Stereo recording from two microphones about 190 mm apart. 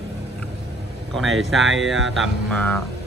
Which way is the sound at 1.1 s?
Centre (ahead or behind).